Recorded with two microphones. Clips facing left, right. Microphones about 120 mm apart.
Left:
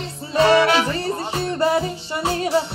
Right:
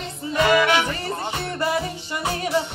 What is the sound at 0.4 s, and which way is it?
Music, 35° left (ahead or behind).